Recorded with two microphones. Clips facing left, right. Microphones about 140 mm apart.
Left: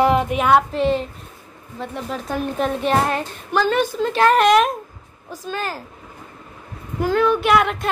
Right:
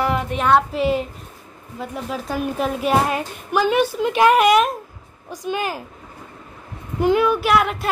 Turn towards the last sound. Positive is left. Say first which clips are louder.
# left 1 dB
turn(degrees=0)  # may be behind; listen again after turning